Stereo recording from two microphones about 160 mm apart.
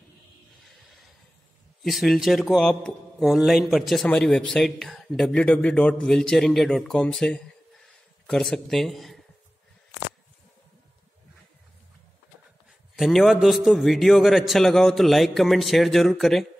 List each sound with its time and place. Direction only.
1.8 s a man's voice: centre (ahead or behind)
12.9 s a man's voice: centre (ahead or behind)